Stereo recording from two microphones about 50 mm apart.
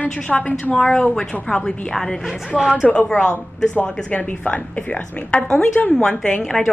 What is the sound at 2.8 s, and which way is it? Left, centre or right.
A woman's voice, left.